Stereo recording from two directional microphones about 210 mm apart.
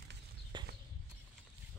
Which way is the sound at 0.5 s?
20° right (ahead or behind).